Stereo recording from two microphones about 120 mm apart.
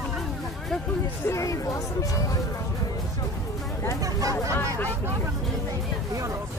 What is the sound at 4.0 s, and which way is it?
Speech, 30° right (ahead or behind).